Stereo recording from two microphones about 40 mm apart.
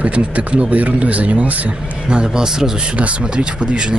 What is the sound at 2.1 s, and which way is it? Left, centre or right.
Speech, centre.